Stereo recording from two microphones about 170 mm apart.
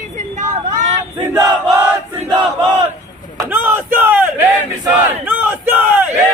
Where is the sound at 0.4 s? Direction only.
50° right (ahead or behind).